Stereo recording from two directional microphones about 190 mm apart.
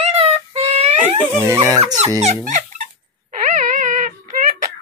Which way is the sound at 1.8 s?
30° right (ahead or behind).